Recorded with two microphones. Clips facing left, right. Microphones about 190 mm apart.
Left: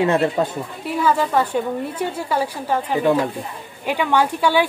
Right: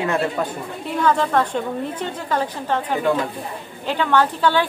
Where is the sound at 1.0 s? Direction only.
5° left (ahead or behind).